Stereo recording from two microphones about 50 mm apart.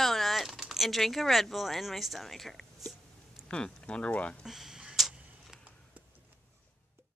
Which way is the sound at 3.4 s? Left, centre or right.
Centre.